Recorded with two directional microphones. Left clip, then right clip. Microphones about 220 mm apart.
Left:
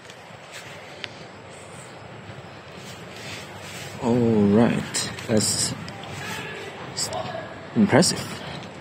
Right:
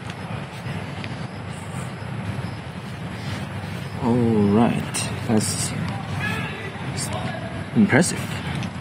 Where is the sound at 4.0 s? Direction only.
5° left (ahead or behind).